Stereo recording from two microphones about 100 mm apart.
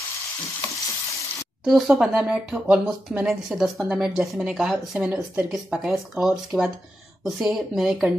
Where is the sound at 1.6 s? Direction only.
Centre (ahead or behind).